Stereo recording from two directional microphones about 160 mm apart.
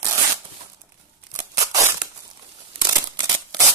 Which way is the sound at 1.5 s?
20° right (ahead or behind).